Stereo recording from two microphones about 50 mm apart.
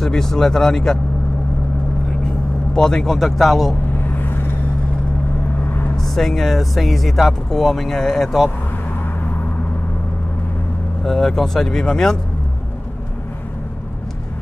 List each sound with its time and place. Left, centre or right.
0.0 s speech: centre
2.2 s speech: centre
4.1 s vehicle: left
5.6 s vehicle: left
5.9 s speech: centre
11.1 s speech: centre